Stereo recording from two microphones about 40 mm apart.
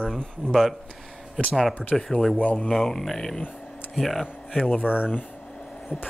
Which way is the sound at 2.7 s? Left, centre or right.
Centre.